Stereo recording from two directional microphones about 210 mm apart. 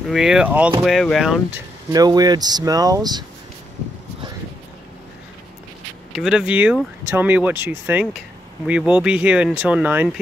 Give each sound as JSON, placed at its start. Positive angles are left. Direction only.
{"t": 0.1, "sound": "speech", "side_deg": -5}
{"t": 1.9, "sound": "speech", "side_deg": -20}
{"t": 6.1, "sound": "speech", "side_deg": 0}